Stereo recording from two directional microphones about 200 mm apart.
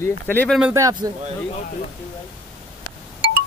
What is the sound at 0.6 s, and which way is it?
Speech, 15° right (ahead or behind).